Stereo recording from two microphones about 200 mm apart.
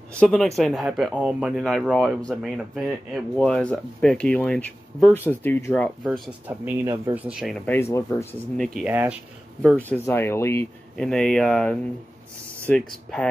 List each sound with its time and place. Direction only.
0.1 s speech: 5° left (ahead or behind)
6.0 s speech: 5° right (ahead or behind); by 8.4 s 15° left (ahead or behind)
8.5 s speech: centre (ahead or behind)
9.6 s speech: 5° left (ahead or behind)